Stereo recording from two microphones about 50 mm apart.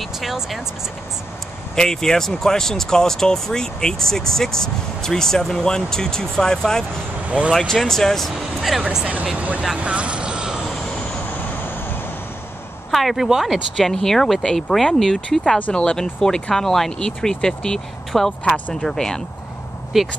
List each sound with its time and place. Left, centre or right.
0.0 s speech: centre
1.8 s speech: centre
7.2 s speech: right
7.5 s speech: centre
9.1 s speech: right
9.8 s vehicle: right
12.9 s speech: centre
15.7 s speech: centre
19.9 s speech: centre